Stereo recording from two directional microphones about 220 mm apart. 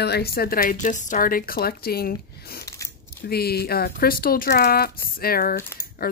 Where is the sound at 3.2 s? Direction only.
45° left (ahead or behind).